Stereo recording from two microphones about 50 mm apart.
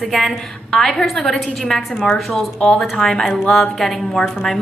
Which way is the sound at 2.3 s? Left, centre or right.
Centre.